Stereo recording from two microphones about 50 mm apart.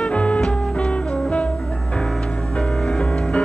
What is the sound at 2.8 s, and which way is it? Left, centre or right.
Music, centre.